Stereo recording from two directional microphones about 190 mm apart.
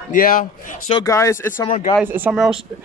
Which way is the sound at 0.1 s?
45° left (ahead or behind).